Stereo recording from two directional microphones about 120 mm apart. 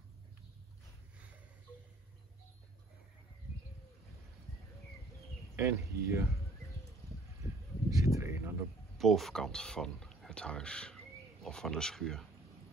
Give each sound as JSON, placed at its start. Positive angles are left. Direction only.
{"t": 5.6, "sound": "speech", "side_deg": -25}
{"t": 7.9, "sound": "a sound", "side_deg": -25}
{"t": 8.9, "sound": "speech", "side_deg": 0}